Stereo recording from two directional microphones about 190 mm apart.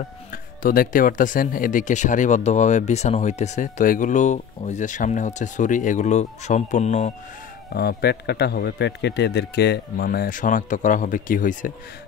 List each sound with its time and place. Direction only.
0.3 s speech: 45° left (ahead or behind)
7.7 s a man's voice: 55° left (ahead or behind)